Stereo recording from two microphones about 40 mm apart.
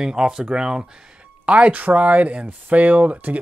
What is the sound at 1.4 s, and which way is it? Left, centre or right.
Speech, right.